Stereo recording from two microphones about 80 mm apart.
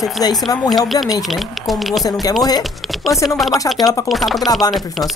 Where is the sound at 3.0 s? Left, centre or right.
Centre.